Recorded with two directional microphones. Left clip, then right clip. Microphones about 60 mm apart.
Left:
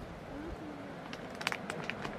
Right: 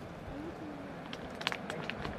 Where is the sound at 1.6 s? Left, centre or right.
Left.